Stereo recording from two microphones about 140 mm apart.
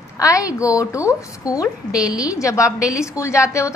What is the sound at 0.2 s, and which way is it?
A woman's voice, 25° left (ahead or behind).